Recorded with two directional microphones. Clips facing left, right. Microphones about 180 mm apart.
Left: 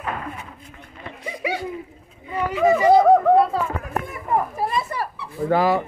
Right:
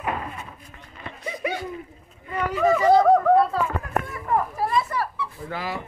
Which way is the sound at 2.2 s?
10° left (ahead or behind).